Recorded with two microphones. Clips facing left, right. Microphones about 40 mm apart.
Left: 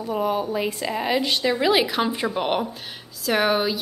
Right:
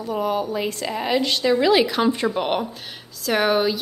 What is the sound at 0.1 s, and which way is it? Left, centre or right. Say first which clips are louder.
A woman's voice: even; centre.